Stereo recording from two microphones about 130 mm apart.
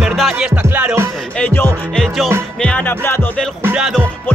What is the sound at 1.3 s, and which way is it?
Music, 10° left (ahead or behind).